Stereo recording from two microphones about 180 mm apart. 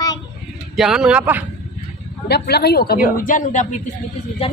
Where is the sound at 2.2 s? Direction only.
65° left (ahead or behind).